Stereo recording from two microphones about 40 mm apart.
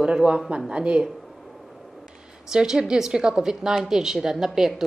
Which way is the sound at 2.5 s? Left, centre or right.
Centre.